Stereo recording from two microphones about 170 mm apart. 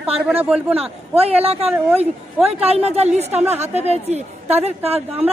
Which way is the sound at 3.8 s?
40° right (ahead or behind).